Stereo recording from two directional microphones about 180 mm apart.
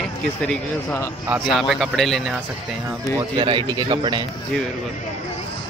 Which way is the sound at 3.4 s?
25° right (ahead or behind).